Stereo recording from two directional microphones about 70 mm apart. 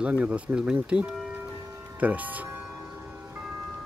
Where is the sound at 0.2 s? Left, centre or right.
Centre.